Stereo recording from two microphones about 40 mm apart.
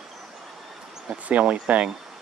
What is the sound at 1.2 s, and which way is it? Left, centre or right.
Speech, right.